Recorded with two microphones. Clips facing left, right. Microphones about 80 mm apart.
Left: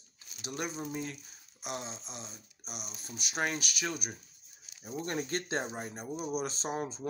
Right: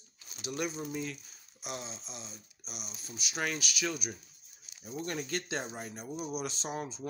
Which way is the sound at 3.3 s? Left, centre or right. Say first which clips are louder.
Left 1 dB; left.